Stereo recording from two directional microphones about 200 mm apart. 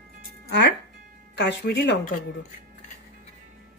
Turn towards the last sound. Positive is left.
turn(degrees=55)  # may be behind; listen again after turning